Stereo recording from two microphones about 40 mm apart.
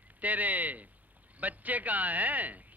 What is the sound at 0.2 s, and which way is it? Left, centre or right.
A woman's voice, right.